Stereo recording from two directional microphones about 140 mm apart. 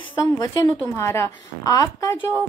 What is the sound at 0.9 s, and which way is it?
Speech, 20° left (ahead or behind).